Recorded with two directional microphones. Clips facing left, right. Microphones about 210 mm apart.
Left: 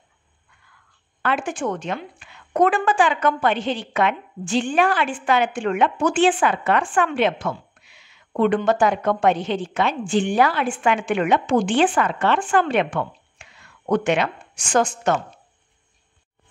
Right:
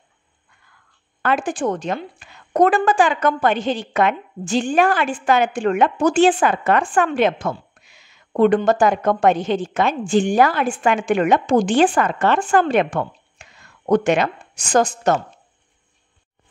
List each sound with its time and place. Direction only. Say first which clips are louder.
1.2 s a woman's voice: right 3 dB; 40° right (ahead or behind)